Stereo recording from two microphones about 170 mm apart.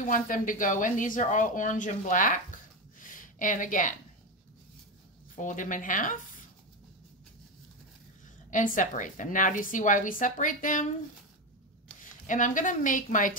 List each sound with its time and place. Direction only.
0.0 s a woman's voice: 50° left (ahead or behind)
5.3 s a woman's voice: 50° left (ahead or behind)
8.5 s a woman's voice: 50° left (ahead or behind)
12.3 s a woman's voice: 50° left (ahead or behind)